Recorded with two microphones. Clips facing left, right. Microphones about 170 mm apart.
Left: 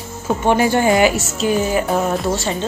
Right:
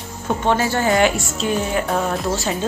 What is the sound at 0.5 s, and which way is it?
Speech, 15° left (ahead or behind).